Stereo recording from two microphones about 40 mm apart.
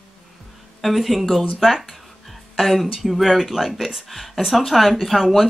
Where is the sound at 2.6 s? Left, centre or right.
Centre.